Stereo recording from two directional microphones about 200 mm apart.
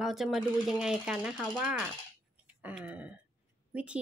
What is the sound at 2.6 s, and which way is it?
Throat clearing, 5° right (ahead or behind).